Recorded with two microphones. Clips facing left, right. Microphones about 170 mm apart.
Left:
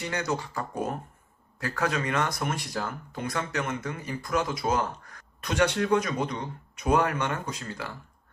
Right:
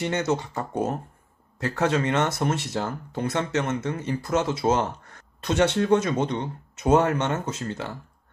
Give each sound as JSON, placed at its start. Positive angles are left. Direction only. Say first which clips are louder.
{"t": 0.0, "sound": "speech", "louder": "right 5 dB", "side_deg": -25}